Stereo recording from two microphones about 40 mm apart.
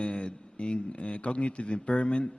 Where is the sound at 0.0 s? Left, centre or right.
Left.